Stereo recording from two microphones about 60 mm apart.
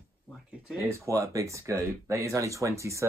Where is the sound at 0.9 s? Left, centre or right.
Right.